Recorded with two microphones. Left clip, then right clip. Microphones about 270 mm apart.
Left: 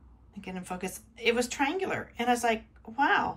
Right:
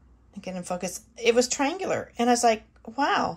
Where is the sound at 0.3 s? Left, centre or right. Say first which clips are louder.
Right 6 dB; centre.